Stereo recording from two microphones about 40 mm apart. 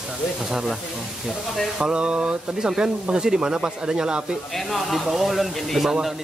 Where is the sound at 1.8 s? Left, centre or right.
Right.